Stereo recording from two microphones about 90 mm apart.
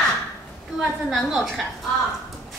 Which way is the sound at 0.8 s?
Centre (ahead or behind).